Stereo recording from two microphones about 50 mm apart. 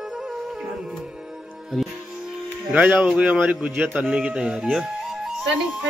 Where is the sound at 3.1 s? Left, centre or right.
Right.